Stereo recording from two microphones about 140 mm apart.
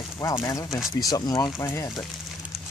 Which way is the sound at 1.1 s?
30° left (ahead or behind).